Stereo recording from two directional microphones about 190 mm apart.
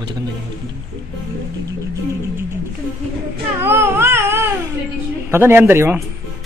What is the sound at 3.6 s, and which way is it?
Babbling, 10° right (ahead or behind).